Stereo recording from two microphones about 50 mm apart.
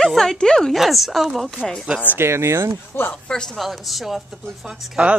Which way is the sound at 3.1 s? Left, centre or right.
Centre.